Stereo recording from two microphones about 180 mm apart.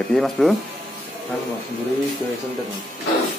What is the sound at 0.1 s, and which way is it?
Speech, centre (ahead or behind).